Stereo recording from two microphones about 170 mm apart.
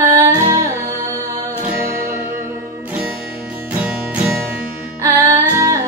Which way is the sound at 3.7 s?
5° right (ahead or behind).